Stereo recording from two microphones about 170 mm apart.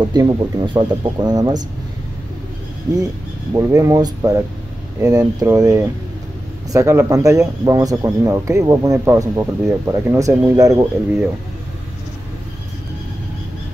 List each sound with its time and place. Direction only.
0.0 s a man's voice: 25° right (ahead or behind)
3.5 s a man's voice: 20° right (ahead or behind)